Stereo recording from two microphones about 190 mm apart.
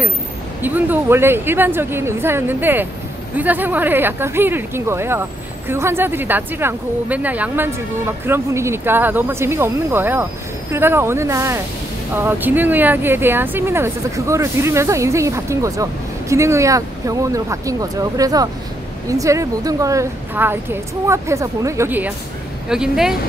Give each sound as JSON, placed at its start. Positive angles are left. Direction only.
{"t": 0.6, "sound": "speech", "side_deg": -10}